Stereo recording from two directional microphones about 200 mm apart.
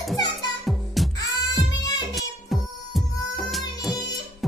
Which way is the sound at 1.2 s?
20° left (ahead or behind).